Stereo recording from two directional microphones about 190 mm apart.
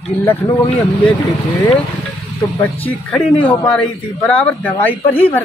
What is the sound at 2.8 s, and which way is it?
Speech, 5° left (ahead or behind).